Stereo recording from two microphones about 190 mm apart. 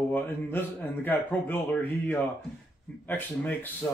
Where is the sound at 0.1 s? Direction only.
10° left (ahead or behind).